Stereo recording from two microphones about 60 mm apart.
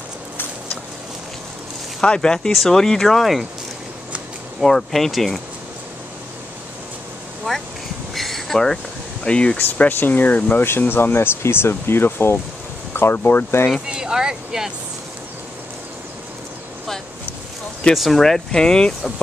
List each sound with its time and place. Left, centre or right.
2.0 s speech: centre
4.6 s speech: centre
7.5 s speech: centre
8.1 s a sound: centre
9.2 s speech: centre
9.8 s speech: left
13.8 s speech: centre
17.9 s speech: centre